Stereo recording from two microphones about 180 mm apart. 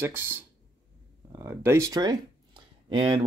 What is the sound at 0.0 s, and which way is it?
Speech, 15° right (ahead or behind).